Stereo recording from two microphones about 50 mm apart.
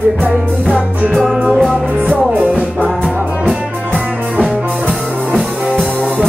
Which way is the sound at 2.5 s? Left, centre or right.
Left.